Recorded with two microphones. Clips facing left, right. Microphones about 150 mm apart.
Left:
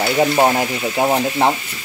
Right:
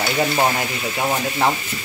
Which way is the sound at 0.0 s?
30° left (ahead or behind).